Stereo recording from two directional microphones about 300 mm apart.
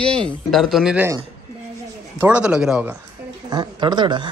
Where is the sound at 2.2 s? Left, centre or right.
Centre.